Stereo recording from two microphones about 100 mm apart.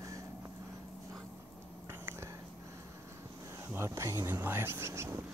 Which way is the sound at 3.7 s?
30° right (ahead or behind).